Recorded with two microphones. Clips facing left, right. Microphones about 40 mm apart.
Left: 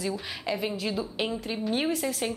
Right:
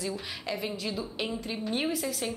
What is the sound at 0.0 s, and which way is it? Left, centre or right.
A woman's voice, centre.